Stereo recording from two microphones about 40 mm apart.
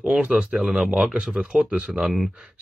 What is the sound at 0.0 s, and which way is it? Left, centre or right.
Speech, right.